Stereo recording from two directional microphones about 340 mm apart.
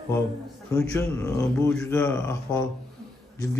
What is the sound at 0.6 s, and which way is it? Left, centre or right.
A man's voice, centre.